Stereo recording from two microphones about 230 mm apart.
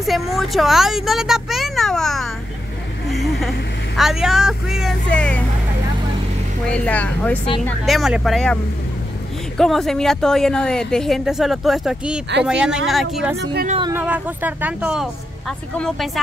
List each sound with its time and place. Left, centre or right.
0.0 s speech: centre
6.7 s speech: centre
9.6 s speech: centre
13.4 s a woman's voice: right
13.7 s speech: right
13.9 s speech: centre